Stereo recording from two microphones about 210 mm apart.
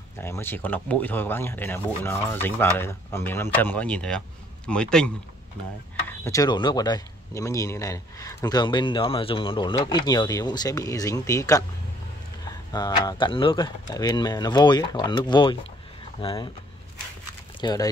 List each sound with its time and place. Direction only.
0.2 s speech: 10° left (ahead or behind)
12.7 s speech: 20° left (ahead or behind)
17.6 s speech: 20° left (ahead or behind)